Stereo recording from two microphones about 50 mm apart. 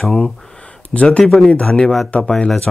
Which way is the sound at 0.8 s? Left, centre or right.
Left.